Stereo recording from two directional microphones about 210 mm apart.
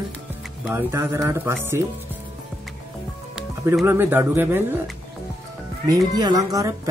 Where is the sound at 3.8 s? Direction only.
10° right (ahead or behind).